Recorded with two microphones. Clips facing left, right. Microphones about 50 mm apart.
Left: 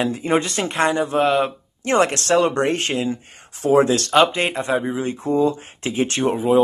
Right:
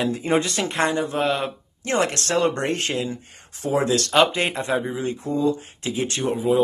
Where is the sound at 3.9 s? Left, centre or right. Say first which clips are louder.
Left 2 dB; centre.